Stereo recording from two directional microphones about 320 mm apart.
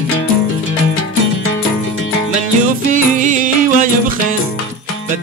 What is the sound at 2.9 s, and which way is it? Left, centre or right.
Music, right.